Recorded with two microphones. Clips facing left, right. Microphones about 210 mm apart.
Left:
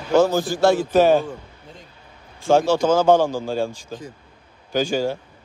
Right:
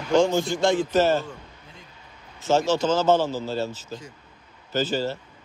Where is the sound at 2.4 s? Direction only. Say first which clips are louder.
Left 4 dB; 10° left (ahead or behind).